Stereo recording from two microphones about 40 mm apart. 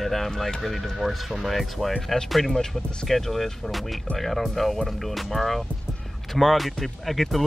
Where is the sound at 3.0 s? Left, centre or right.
Centre.